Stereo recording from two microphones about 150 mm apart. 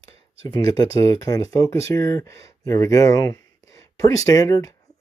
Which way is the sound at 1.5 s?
20° left (ahead or behind).